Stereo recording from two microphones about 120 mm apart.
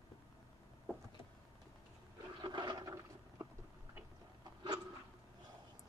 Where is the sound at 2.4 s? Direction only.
40° right (ahead or behind).